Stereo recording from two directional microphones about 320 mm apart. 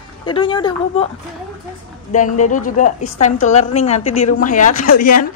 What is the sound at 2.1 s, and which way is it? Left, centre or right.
A man's voice, left.